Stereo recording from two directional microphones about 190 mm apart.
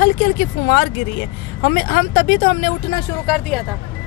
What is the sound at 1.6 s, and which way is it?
Speech, 50° left (ahead or behind).